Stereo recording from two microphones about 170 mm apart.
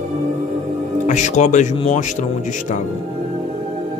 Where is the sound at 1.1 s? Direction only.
45° left (ahead or behind).